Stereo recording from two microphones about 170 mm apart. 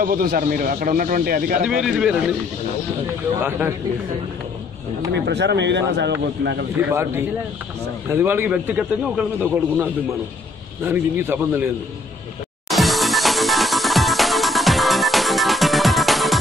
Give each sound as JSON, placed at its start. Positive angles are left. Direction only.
{"t": 0.0, "sound": "a man's voice", "side_deg": -60}
{"t": 1.6, "sound": "speech", "side_deg": 0}
{"t": 3.4, "sound": "a man's voice", "side_deg": -10}
{"t": 5.3, "sound": "a man's voice", "side_deg": -85}
{"t": 6.9, "sound": "a man's voice", "side_deg": -15}
{"t": 12.6, "sound": "music", "side_deg": 0}